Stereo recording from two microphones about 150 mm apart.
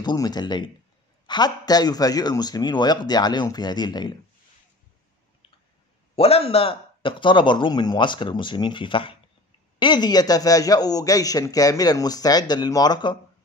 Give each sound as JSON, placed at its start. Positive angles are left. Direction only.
{"t": 0.0, "sound": "a man's voice", "side_deg": 25}
{"t": 6.1, "sound": "a man's voice", "side_deg": 40}